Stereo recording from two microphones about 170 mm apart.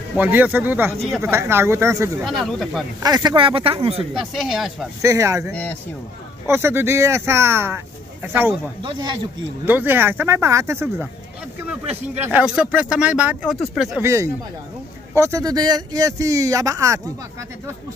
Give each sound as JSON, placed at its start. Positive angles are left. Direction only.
{"t": 0.2, "sound": "speech", "side_deg": -10}
{"t": 2.2, "sound": "speech", "side_deg": 0}
{"t": 3.0, "sound": "speech", "side_deg": -20}
{"t": 4.1, "sound": "speech", "side_deg": 0}
{"t": 5.0, "sound": "speech", "side_deg": -15}
{"t": 5.5, "sound": "speech", "side_deg": 10}
{"t": 6.4, "sound": "speech", "side_deg": -15}
{"t": 8.8, "sound": "speech", "side_deg": -25}
{"t": 9.7, "sound": "speech", "side_deg": -10}
{"t": 14.0, "sound": "speech", "side_deg": -15}